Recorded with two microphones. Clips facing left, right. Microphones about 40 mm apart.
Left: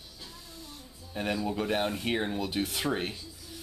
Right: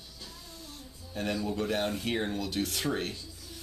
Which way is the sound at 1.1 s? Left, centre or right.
Centre.